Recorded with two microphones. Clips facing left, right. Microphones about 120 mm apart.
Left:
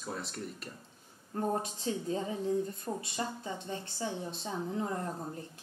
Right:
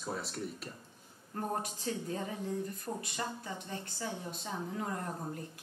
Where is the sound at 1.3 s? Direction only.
25° left (ahead or behind).